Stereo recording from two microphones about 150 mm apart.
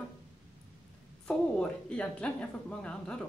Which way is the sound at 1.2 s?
10° left (ahead or behind).